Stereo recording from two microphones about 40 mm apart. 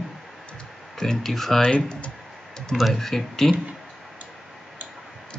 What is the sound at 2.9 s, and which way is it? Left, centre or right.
Speech, centre.